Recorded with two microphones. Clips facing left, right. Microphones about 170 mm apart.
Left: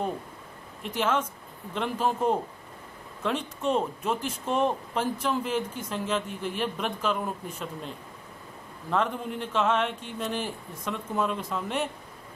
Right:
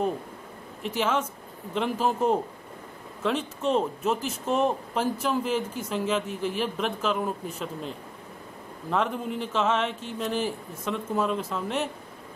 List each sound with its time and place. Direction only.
0.8 s a man's voice: 5° right (ahead or behind)
8.9 s speech: 5° right (ahead or behind)